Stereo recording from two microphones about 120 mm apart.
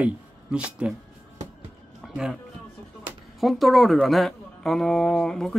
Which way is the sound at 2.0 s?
5° right (ahead or behind).